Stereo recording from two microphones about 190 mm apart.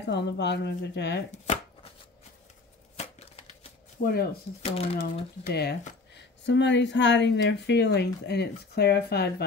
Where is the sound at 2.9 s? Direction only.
35° left (ahead or behind).